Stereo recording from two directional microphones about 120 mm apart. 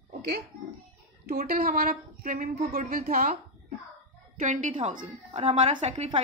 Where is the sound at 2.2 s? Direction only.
90° right; by 3.4 s 70° right (ahead or behind).